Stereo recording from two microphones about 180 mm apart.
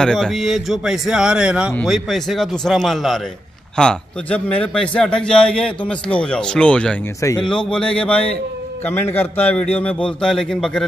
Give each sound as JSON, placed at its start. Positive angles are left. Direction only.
{"t": 0.0, "sound": "a man's voice", "side_deg": 5}
{"t": 7.2, "sound": "a man's voice", "side_deg": 15}
{"t": 7.4, "sound": "a man's voice", "side_deg": 5}